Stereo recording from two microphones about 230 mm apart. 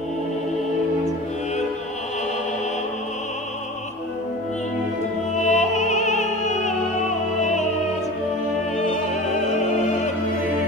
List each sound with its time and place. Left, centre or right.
5.4 s music: left
8.7 s music: left